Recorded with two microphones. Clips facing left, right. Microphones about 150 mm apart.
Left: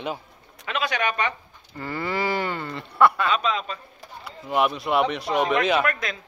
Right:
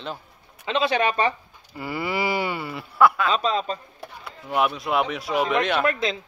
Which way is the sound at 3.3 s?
35° right (ahead or behind).